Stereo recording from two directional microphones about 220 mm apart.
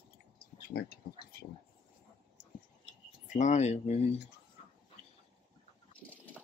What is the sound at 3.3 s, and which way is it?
Speech, 30° left (ahead or behind).